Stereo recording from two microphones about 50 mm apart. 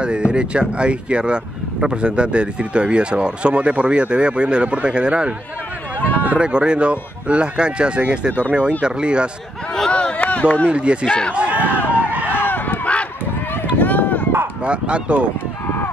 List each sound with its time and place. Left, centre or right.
0.0 s speech: centre
6.1 s run: right
6.4 s speech: centre
9.8 s a sound: left
10.4 s speech: left
10.7 s speech: right
11.1 s speech: left
11.3 s a sound: right
11.7 s a sound: left
14.6 s speech: right